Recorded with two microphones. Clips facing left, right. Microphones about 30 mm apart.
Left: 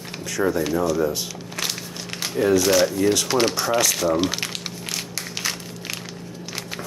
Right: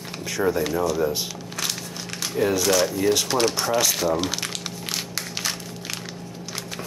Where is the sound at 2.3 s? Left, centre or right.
Centre.